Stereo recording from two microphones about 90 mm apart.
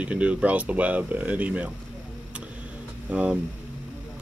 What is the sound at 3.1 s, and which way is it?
Speech, 15° right (ahead or behind).